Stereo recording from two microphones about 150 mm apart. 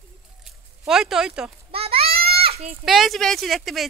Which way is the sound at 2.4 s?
40° right (ahead or behind).